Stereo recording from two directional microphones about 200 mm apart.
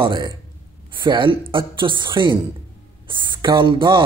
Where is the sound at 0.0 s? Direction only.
25° right (ahead or behind).